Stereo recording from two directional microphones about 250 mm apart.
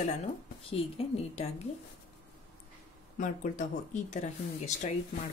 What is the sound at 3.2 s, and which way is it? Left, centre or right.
Speech, left.